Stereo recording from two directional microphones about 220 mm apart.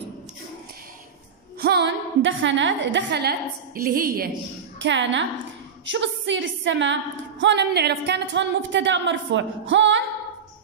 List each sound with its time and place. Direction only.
1.6 s a woman's voice: 50° right (ahead or behind)
4.7 s a woman's voice: 55° right (ahead or behind)